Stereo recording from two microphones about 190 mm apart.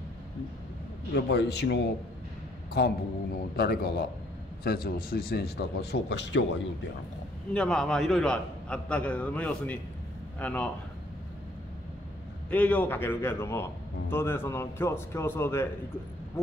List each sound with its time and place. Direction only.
1.1 s a man's voice: 60° left (ahead or behind)
7.5 s a man's voice: 5° left (ahead or behind)
12.4 s speech: 10° left (ahead or behind)